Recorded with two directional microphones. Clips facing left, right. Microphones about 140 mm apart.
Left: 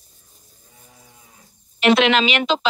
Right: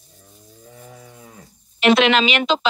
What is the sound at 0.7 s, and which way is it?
Livestock, 90° right.